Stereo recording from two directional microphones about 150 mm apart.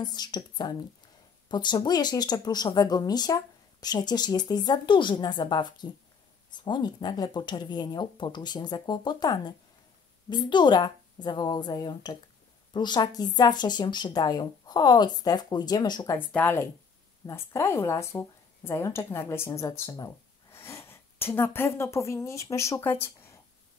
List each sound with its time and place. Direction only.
0.0 s speech: 30° left (ahead or behind)
16.3 s a woman's voice: 10° left (ahead or behind)